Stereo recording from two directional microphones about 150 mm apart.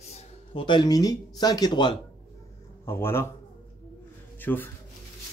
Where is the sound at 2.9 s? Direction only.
15° left (ahead or behind).